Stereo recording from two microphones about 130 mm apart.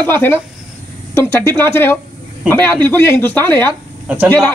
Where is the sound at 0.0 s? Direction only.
15° left (ahead or behind).